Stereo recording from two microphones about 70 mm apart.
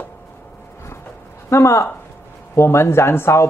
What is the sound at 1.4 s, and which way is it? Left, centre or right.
Speech, left.